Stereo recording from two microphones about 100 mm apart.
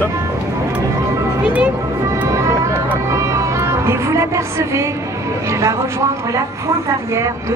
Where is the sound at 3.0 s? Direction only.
30° right (ahead or behind).